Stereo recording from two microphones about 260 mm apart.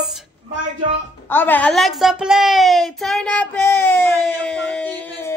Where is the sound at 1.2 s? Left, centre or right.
Centre.